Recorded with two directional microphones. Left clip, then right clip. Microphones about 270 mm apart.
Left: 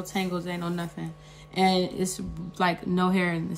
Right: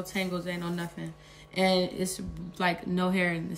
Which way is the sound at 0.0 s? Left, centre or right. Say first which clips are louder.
Left 2 dB; centre.